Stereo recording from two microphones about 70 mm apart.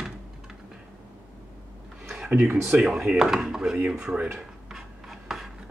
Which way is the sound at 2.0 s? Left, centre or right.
Centre.